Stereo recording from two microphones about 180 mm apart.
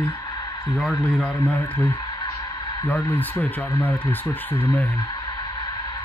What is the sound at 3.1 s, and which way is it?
Speech, 10° left (ahead or behind).